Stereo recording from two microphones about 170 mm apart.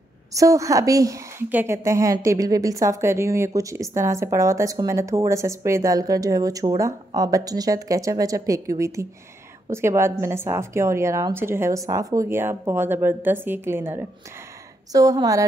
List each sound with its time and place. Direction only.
0.3 s a woman's voice: 20° right (ahead or behind)